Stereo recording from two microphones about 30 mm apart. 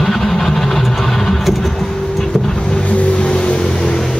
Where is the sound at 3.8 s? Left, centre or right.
Centre.